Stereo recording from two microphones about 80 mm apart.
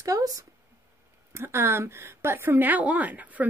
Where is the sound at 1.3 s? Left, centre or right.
Right.